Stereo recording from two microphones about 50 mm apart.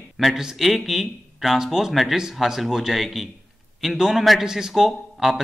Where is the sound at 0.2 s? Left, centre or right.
Centre.